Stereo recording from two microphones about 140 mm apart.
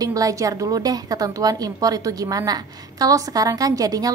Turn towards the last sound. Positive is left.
turn(degrees=-25)  # may be behind; listen again after turning